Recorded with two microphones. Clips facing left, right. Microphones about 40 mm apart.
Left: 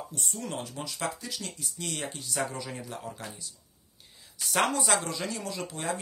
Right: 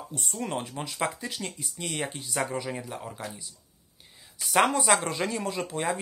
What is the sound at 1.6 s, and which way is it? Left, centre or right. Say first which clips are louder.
Speech: right 3 dB; centre.